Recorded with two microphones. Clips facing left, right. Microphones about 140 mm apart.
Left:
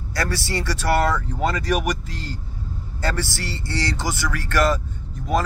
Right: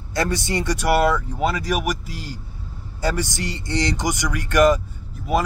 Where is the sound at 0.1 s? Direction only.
20° right (ahead or behind).